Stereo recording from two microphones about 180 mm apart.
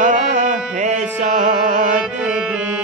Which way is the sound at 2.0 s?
5° right (ahead or behind).